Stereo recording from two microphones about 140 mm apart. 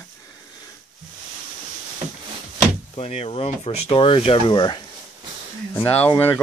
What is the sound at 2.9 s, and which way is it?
Speech, 45° left (ahead or behind).